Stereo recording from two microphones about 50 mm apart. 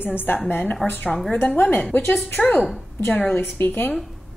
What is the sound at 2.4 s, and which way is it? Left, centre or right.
Speech, centre.